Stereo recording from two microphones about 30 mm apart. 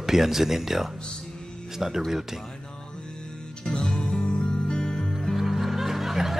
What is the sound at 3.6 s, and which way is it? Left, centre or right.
Music, left.